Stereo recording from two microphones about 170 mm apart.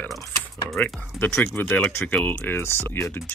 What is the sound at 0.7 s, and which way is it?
Speech, 10° left (ahead or behind).